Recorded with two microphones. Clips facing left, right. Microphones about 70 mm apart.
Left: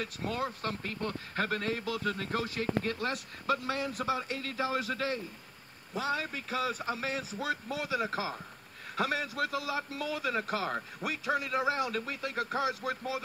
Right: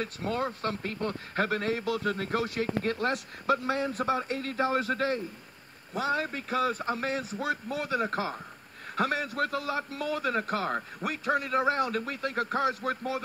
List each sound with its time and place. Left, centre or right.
0.0 s a man's voice: right
1.0 s a man's voice: right